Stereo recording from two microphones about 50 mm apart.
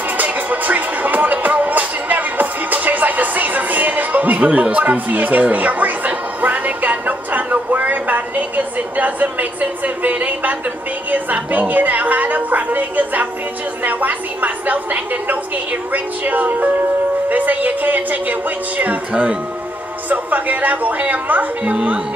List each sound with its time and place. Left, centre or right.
0.2 s music: right
4.5 s a sound: right
11.1 s a woman's voice: right